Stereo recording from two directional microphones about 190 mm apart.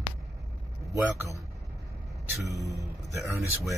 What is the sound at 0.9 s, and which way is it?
Speech, 15° right (ahead or behind).